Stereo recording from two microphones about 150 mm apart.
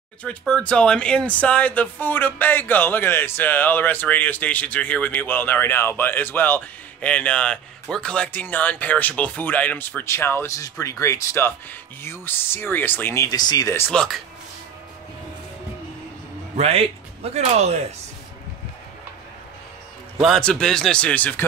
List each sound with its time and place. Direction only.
0.2 s speech: 10° left (ahead or behind)
16.5 s speech: 40° right (ahead or behind)
20.2 s speech: centre (ahead or behind)